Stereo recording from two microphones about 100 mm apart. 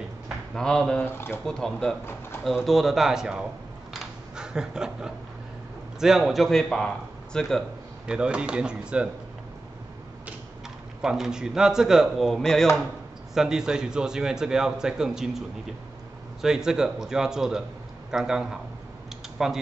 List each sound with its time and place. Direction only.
0.6 s speech: 5° left (ahead or behind)
1.0 s speech: 25° left (ahead or behind)
1.4 s a man's voice: 5° left (ahead or behind)
3.9 s a sound: 5° right (ahead or behind)
5.9 s a man's voice: 5° right (ahead or behind)
8.1 s a man's voice: 10° right (ahead or behind)
11.0 s a man's voice: 5° right (ahead or behind)